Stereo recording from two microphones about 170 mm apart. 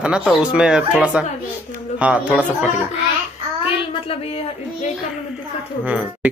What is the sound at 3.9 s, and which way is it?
Speech, 35° left (ahead or behind).